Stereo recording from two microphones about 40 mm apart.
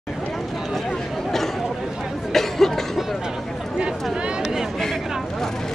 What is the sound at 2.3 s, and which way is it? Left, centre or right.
Cough, centre.